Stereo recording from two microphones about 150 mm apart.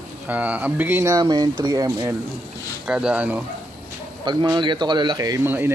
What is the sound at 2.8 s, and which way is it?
Speech, 5° right (ahead or behind).